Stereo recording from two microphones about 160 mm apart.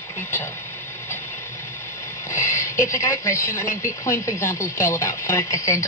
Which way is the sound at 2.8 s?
20° left (ahead or behind).